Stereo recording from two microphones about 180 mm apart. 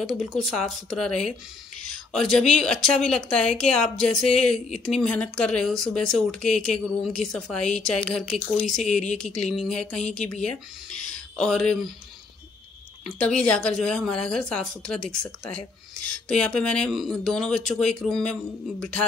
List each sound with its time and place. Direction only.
0.0 s a woman's voice: centre (ahead or behind)
13.2 s a woman's voice: 5° left (ahead or behind)